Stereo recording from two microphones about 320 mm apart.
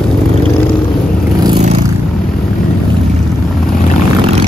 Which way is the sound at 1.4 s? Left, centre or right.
Centre.